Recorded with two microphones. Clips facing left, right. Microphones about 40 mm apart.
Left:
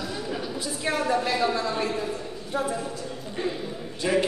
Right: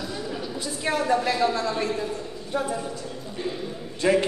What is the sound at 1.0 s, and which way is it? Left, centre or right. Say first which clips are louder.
Speech: right 2 dB; centre.